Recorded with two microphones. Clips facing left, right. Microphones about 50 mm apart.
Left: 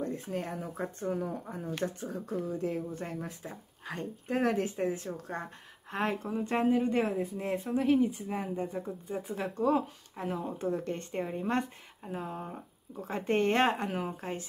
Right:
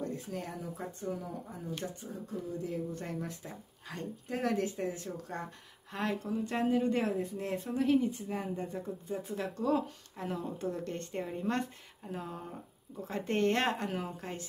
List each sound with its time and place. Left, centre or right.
0.0 s speech: left
2.0 s speech: left
2.9 s speech: centre
3.8 s speech: left
6.6 s speech: centre